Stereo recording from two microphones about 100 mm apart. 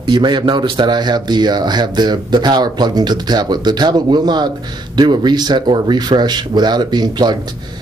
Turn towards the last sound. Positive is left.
turn(degrees=-45)  # may be behind; listen again after turning